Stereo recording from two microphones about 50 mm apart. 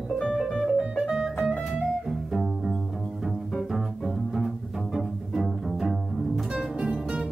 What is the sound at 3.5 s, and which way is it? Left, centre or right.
Double bass, centre.